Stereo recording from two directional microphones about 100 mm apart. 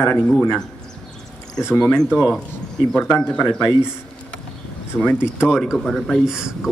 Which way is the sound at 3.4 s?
25° left (ahead or behind).